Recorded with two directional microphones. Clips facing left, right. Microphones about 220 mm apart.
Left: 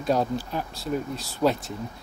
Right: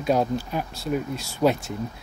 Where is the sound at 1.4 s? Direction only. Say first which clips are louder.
Right 2 dB; 15° right (ahead or behind).